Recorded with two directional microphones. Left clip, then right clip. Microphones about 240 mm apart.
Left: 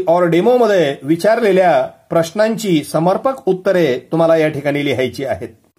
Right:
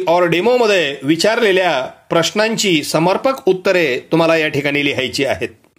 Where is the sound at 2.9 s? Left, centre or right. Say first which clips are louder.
Even; right.